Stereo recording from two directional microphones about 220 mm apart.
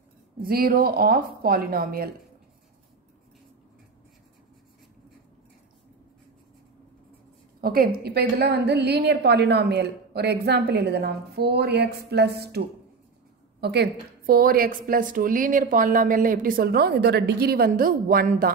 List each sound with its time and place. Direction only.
0.4 s a woman's voice: 40° right (ahead or behind)
7.6 s a woman's voice: 45° right (ahead or behind)